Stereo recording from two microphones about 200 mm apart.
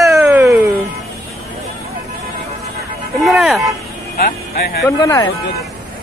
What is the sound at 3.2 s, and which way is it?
Vehicle, centre (ahead or behind).